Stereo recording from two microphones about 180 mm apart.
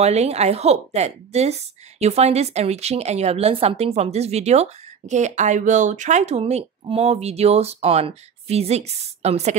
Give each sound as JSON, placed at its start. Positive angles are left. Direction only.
{"t": 0.0, "sound": "a woman's voice", "side_deg": -35}